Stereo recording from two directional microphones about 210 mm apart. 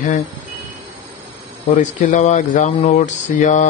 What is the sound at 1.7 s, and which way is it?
Speech, 35° left (ahead or behind).